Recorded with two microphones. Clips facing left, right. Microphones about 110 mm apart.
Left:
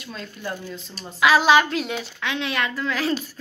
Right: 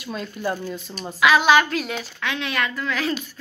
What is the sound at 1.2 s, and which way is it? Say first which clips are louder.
A woman's voice: even; 30° left (ahead or behind).